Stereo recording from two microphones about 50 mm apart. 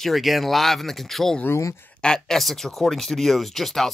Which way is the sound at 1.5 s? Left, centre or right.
Left.